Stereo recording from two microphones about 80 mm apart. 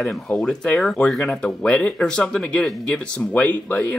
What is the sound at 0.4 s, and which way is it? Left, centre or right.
Speech, centre.